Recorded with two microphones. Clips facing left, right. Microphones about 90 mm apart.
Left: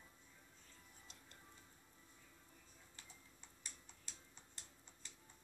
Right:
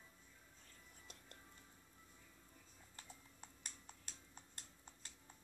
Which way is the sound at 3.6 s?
50° right (ahead or behind).